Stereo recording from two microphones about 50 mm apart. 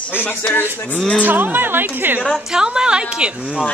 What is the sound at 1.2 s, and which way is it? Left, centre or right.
Speech, right.